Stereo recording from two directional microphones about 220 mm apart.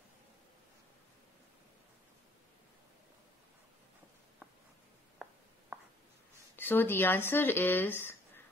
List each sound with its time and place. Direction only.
5.2 s writing: centre (ahead or behind)
6.5 s speech: 10° left (ahead or behind)